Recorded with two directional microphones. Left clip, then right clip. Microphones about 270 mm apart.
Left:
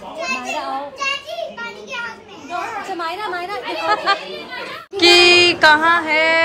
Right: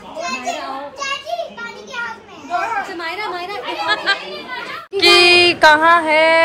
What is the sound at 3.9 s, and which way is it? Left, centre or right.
Speech, centre.